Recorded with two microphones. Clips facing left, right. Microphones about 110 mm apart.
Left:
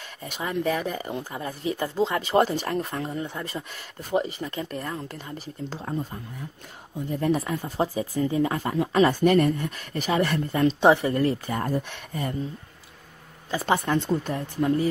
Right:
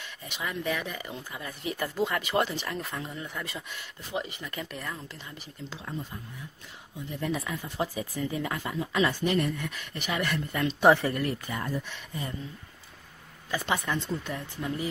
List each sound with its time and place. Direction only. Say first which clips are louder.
0.2 s speech: left 7 dB; 40° left (ahead or behind)
2.5 s speech: left 7 dB; 45° left (ahead or behind)
4.7 s speech: left 6 dB; 50° left (ahead or behind)
7.1 s speech: left 7 dB; 45° left (ahead or behind)
10.8 s speech: left 1 dB; 20° left (ahead or behind)
11.1 s speech: left 7 dB; 35° left (ahead or behind); by 12.4 s 50° left (ahead or behind)
13.5 s speech: left 5 dB; 30° left (ahead or behind)
13.9 s speech: left 8 dB; 55° left (ahead or behind)